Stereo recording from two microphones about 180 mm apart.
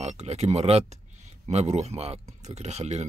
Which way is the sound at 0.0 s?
35° right (ahead or behind).